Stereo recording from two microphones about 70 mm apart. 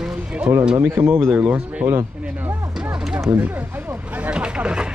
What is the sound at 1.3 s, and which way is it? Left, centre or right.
Speech, right.